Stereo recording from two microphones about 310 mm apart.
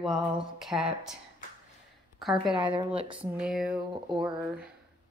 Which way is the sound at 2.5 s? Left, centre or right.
Centre.